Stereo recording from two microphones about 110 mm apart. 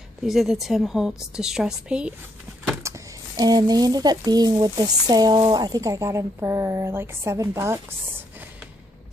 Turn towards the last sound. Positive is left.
turn(degrees=-25)  # may be behind; listen again after turning